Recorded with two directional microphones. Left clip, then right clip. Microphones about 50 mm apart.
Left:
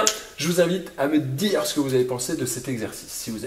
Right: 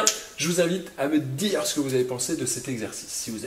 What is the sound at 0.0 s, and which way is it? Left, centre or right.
Speech, left.